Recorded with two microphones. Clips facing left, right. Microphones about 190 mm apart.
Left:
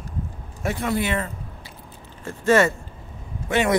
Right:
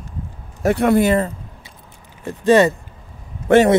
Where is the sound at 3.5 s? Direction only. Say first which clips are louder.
Right 10 dB; 60° right (ahead or behind).